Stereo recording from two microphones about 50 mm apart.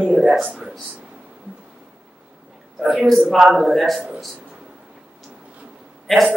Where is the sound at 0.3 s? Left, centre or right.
Right.